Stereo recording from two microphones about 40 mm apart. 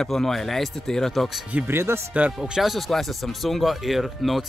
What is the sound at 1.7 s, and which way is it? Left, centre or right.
Speech, right.